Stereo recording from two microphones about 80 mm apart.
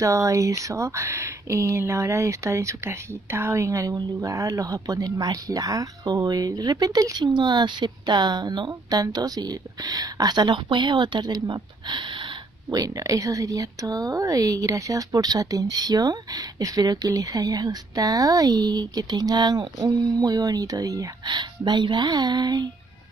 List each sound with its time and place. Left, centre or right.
0.0 s speech: right
9.0 s speech: right
12.6 s speech: right
21.3 s speech: right